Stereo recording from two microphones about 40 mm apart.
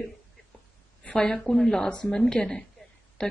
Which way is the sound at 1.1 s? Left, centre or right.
Left.